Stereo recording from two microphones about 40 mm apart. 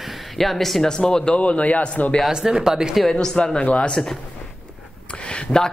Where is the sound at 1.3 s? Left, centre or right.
Left.